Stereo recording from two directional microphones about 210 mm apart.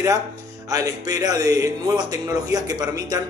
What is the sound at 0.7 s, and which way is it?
Speech, 15° right (ahead or behind).